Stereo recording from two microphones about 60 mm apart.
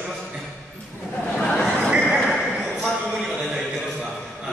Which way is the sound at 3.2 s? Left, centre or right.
Centre.